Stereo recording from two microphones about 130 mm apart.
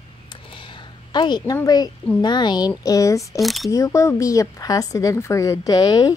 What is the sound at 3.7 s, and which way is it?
A woman's voice, 25° left (ahead or behind).